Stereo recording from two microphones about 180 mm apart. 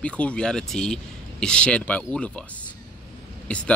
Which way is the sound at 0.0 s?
5° left (ahead or behind).